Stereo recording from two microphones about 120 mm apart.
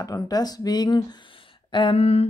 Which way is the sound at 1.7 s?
50° left (ahead or behind).